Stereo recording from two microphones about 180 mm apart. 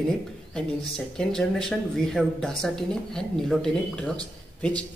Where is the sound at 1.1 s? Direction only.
5° left (ahead or behind).